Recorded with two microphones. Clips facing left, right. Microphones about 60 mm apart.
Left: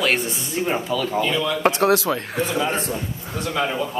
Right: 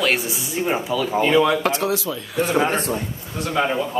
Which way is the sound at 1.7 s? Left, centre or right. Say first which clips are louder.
Left 4 dB; left.